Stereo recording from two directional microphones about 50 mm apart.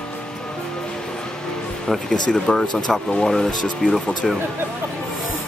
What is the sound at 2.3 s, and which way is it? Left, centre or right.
Speech, centre.